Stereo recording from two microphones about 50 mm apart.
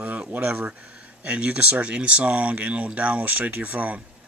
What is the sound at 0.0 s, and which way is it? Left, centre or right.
Speech, right.